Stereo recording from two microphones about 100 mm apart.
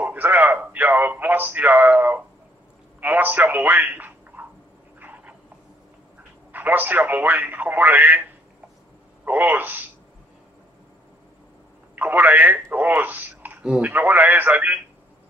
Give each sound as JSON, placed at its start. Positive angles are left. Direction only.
{"t": 0.0, "sound": "a man's voice", "side_deg": -15}
{"t": 6.5, "sound": "speech", "side_deg": -20}
{"t": 9.2, "sound": "speech", "side_deg": -20}
{"t": 11.9, "sound": "speech", "side_deg": -20}